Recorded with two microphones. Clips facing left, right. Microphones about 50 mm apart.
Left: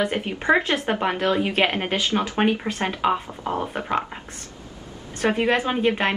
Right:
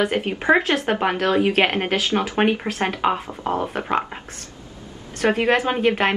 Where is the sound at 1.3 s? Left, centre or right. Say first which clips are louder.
Right 3 dB; right.